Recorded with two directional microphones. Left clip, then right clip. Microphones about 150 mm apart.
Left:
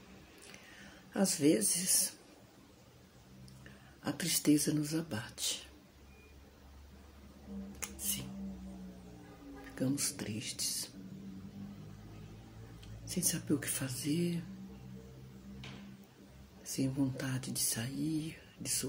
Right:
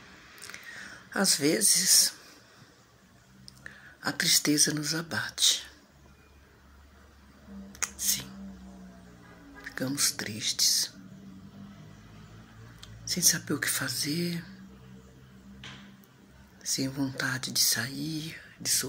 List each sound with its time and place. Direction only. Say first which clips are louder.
1.1 s speech: right 5 dB; 15° left (ahead or behind)
4.0 s speech: right 9 dB; 15° left (ahead or behind)
7.8 s a sound: right 11 dB; 15° left (ahead or behind)
9.8 s speech: right 7 dB; 15° left (ahead or behind)
13.0 s speech: right 12 dB; 15° left (ahead or behind)
16.6 s speech: right 5 dB; 15° left (ahead or behind)